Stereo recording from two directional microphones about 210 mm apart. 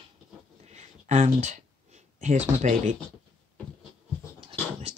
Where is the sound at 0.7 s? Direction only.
35° right (ahead or behind).